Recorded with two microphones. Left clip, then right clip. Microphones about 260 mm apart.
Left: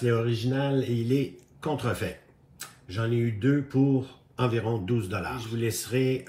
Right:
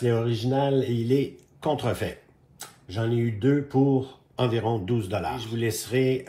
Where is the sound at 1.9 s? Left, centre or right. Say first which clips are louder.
Right 2 dB; centre.